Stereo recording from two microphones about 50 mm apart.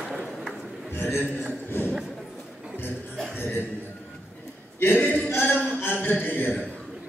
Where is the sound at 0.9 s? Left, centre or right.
Left.